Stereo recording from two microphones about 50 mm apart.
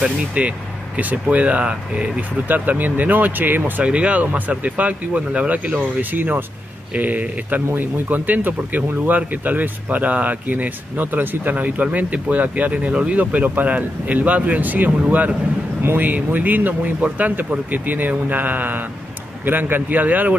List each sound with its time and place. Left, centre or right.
0.3 s speech: right
2.4 s speech: right
3.8 s speech: right